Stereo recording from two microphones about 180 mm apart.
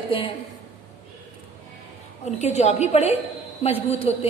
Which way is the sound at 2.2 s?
40° left (ahead or behind).